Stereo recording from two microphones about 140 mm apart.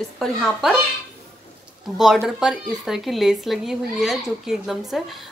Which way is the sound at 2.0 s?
5° right (ahead or behind).